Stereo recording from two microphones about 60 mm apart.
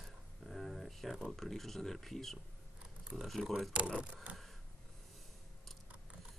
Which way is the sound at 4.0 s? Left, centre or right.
Right.